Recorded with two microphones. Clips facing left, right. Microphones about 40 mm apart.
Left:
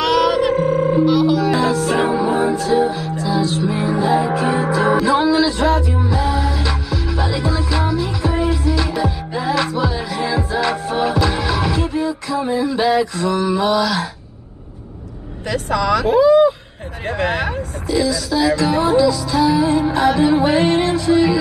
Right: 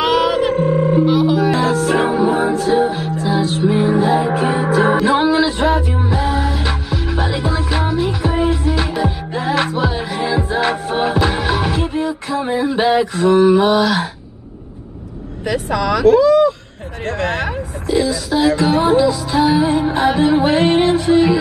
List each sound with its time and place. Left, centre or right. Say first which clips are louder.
0.0 s a sound: even; centre
0.5 s music: right 1 dB; centre
1.0 s music: right 1 dB; centre
2.6 s music: right 1 dB; right
3.6 s music: right 4 dB; centre
15.4 s speech: right 1 dB; centre
16.1 s a sound: right 1 dB; centre
17.0 s speech: even; centre
17.6 s speech: right 2 dB; right
18.6 s music: right 1 dB; right